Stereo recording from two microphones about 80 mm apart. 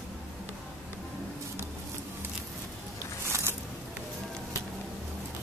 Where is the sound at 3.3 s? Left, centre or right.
Right.